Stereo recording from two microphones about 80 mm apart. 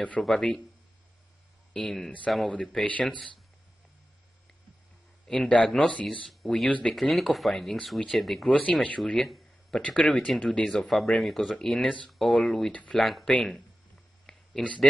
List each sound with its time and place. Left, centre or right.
0.2 s speech: centre
1.7 s speech: centre
5.3 s speech: centre
7.0 s speech: centre
8.5 s speech: centre
12.7 s speech: centre
13.0 s speech: centre
14.3 s a sound: centre